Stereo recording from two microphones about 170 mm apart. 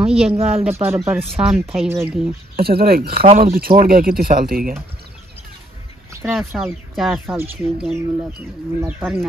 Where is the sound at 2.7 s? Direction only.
65° right (ahead or behind).